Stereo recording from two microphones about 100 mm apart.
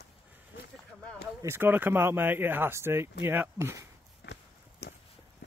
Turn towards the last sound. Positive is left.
turn(degrees=-25)  # may be behind; listen again after turning